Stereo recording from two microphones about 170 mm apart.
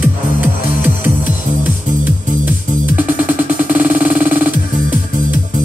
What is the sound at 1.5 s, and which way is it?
Music, 50° right (ahead or behind).